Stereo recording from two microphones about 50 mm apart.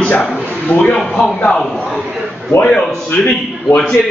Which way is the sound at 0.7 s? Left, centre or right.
Left.